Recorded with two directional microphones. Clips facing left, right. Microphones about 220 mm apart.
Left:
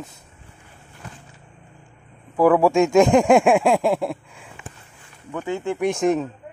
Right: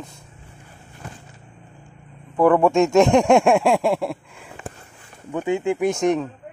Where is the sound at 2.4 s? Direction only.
5° left (ahead or behind).